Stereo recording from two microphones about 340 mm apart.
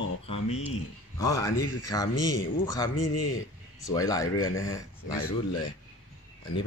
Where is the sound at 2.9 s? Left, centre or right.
Left.